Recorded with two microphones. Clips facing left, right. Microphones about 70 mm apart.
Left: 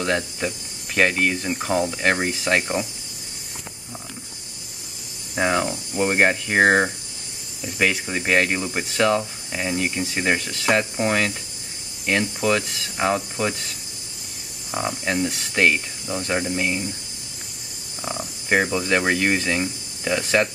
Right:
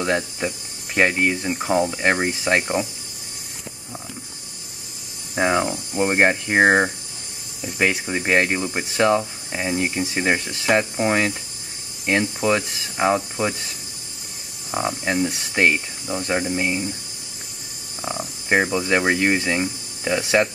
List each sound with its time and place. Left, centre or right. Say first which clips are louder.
0.0 s speech: right 1 dB; centre
5.3 s speech: right 2 dB; centre
14.7 s speech: right 2 dB; centre
18.0 s speech: right 1 dB; centre